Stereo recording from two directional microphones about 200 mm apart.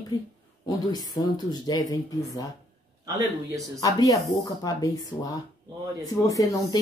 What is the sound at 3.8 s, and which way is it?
Speech, 20° left (ahead or behind).